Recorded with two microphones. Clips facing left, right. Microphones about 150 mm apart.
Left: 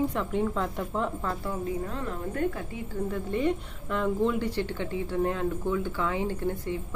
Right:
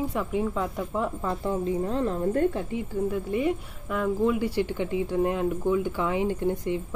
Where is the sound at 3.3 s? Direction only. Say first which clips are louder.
Right 1 dB; 5° right (ahead or behind).